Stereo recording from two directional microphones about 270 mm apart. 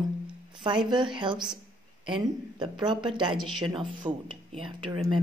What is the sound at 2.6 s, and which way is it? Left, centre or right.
Speech, centre.